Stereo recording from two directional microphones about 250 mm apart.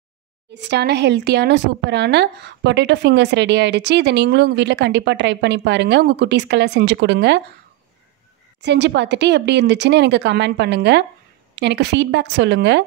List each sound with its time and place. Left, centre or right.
0.6 s a woman's voice: right
8.5 s a woman's voice: right